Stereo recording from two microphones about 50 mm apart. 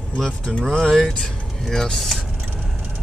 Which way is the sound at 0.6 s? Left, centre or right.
Centre.